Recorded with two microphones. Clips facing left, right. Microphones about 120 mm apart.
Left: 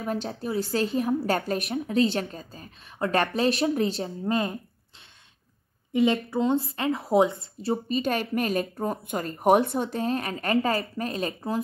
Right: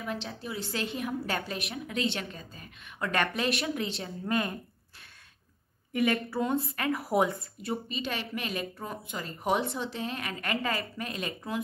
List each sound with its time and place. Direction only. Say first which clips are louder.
0.0 s a woman's voice: left 6 dB; 40° left (ahead or behind)
4.0 s a woman's voice: left 4 dB; 25° left (ahead or behind)
5.9 s a woman's voice: left 5 dB; 25° left (ahead or behind)
7.9 s a woman's voice: left 9 dB; 45° left (ahead or behind)